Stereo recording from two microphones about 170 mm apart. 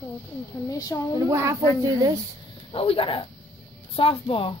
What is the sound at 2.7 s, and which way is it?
Speech, 35° left (ahead or behind).